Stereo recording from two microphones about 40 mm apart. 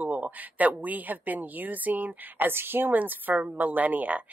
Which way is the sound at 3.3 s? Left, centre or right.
Right.